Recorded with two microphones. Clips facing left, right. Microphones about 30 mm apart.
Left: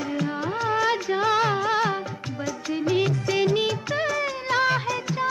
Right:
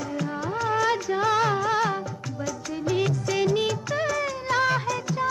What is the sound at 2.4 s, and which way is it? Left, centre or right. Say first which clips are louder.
Music of bollywood: left 3 dB; left.